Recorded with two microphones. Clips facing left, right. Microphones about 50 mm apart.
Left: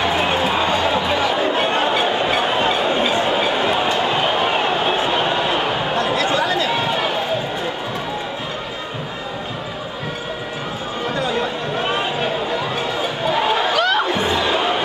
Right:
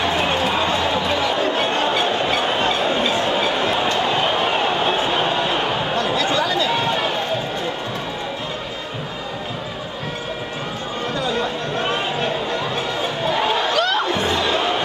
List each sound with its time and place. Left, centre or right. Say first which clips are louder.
0.0 s chatter: left 1 dB; centre
6.2 s chatter: left 1 dB; centre
6.7 s run: left 1 dB; centre
11.2 s chatter: left 1 dB; centre
13.7 s a sound: left 2 dB; centre
14.1 s a sound: left 1 dB; centre